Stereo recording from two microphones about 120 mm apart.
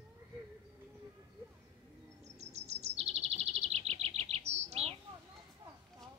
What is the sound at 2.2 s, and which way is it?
Chirp, 65° right (ahead or behind).